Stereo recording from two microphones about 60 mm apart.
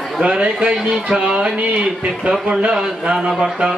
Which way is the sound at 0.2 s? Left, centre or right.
Centre.